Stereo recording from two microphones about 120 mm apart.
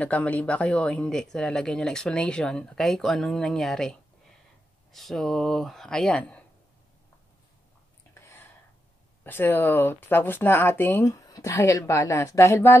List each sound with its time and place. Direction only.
0.0 s speech: 10° left (ahead or behind)
8.1 s a sound: 20° left (ahead or behind)
9.2 s speech: 15° left (ahead or behind)